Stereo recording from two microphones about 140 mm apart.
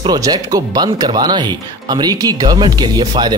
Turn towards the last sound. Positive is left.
turn(degrees=-30)  # may be behind; listen again after turning